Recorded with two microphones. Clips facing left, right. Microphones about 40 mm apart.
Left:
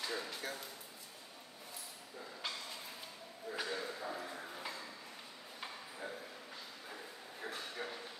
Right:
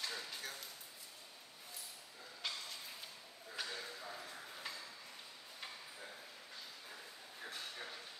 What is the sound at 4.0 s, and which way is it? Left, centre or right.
Ping, left.